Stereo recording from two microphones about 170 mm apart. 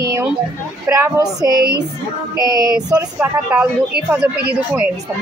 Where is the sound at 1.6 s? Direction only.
70° right (ahead or behind).